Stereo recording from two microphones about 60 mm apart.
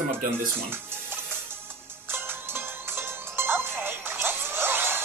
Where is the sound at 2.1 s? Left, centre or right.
Right.